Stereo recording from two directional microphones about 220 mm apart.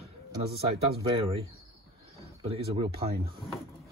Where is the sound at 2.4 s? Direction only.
25° right (ahead or behind).